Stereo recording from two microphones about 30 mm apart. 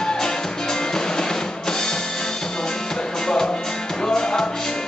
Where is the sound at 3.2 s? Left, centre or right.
Left.